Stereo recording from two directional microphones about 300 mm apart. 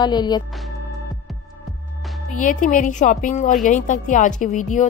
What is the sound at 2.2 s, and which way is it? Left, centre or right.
Speech, left.